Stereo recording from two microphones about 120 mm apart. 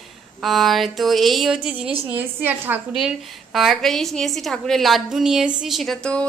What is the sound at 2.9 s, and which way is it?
A woman's voice, 5° right (ahead or behind).